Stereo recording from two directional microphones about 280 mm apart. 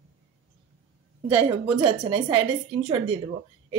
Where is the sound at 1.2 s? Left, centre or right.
Centre.